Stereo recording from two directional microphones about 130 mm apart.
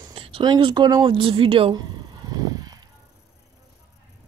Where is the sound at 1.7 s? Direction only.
35° right (ahead or behind).